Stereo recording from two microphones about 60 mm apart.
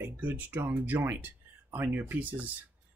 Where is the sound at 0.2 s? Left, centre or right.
Right.